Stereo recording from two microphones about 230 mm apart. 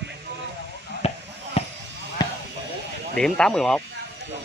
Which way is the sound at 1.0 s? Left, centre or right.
Left.